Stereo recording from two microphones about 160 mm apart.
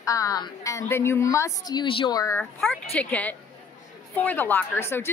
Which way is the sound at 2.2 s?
15° left (ahead or behind).